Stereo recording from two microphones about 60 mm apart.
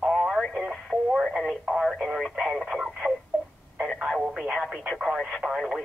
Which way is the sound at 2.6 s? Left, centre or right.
Centre.